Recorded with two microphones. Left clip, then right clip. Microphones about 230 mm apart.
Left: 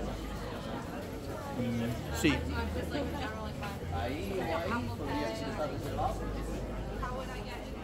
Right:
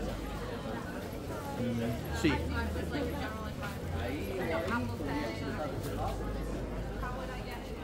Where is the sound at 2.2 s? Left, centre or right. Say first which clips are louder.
Left 1 dB; left.